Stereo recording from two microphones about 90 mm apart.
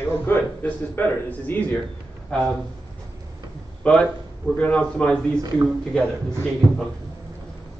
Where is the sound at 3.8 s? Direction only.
10° left (ahead or behind).